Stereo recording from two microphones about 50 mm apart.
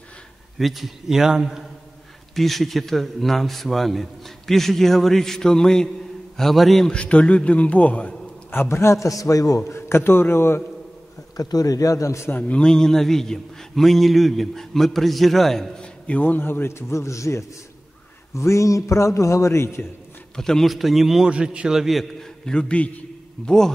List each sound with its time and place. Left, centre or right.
0.6 s a man's voice: centre
2.3 s a man's voice: centre
6.9 s a man's voice: left
8.6 s a man's voice: left
9.7 s a man's voice: left
12.0 s a man's voice: left
12.3 s a man's voice: left
12.5 s a man's voice: centre
16.2 s a man's voice: left
20.3 s a man's voice: centre
20.6 s a man's voice: centre
21.3 s a man's voice: right
21.7 s a man's voice: centre
22.2 s a man's voice: centre